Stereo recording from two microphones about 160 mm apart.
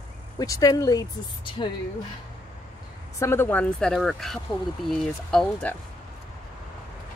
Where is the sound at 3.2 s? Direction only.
15° left (ahead or behind).